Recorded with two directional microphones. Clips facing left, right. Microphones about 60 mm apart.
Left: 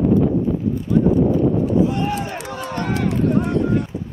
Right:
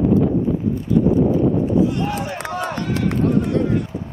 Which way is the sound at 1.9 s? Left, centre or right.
Left.